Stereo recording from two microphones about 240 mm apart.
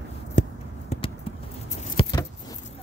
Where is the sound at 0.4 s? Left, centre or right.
Left.